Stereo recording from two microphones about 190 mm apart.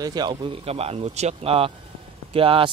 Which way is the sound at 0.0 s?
20° right (ahead or behind).